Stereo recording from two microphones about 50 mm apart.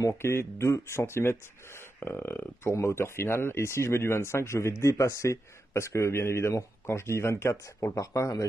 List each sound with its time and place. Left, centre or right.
0.0 s speech: left
2.0 s speech: left